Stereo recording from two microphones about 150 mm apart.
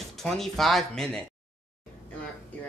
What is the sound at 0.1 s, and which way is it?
A woman's voice, centre (ahead or behind).